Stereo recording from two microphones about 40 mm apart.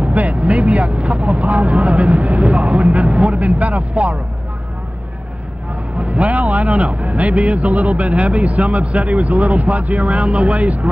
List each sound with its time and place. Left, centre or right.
0.0 s a man's voice: right
5.9 s a man's voice: right